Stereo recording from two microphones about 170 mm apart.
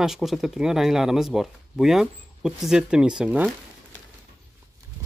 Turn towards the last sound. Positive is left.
turn(degrees=-5)  # may be behind; listen again after turning